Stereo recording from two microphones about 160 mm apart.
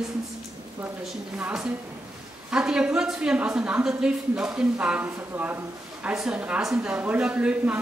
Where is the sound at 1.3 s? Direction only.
5° right (ahead or behind).